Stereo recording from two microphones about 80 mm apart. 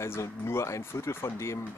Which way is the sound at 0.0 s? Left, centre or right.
Left.